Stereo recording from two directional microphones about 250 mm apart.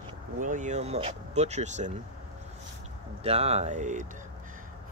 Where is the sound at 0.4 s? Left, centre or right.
Right.